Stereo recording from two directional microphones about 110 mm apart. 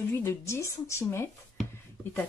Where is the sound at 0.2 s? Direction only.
25° left (ahead or behind).